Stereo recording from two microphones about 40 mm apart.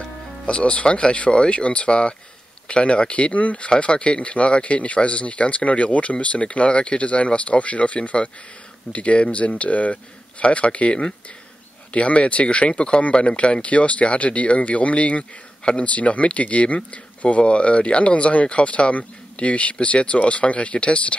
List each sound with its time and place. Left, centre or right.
0.5 s speech: left